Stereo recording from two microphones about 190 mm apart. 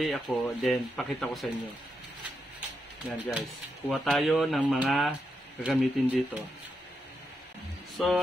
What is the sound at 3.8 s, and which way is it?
Speech, centre (ahead or behind).